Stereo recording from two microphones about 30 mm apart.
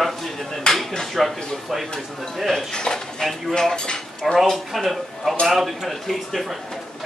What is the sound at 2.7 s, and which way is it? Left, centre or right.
Speech, left.